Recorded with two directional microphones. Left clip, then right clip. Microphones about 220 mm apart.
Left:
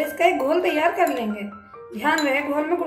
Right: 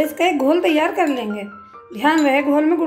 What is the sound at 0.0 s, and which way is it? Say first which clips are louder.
A woman's voice: right 2 dB; 40° right (ahead or behind).